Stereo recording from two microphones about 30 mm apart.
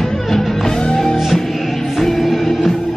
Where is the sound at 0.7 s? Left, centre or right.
Centre.